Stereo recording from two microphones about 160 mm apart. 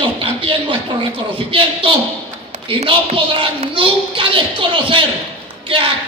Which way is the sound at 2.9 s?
35° right (ahead or behind).